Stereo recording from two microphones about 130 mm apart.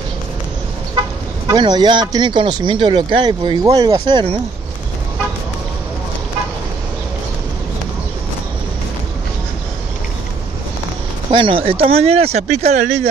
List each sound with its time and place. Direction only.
1.5 s speech: 35° right (ahead or behind)
11.3 s speech: 45° right (ahead or behind); by 12.8 s 60° right (ahead or behind)